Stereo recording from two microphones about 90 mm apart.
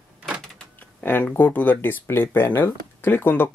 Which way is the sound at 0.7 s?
25° left (ahead or behind).